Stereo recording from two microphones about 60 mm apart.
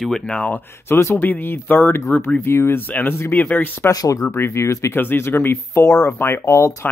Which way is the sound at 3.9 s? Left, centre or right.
Left.